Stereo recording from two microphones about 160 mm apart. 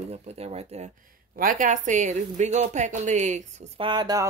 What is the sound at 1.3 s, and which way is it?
A woman's voice, 55° right (ahead or behind).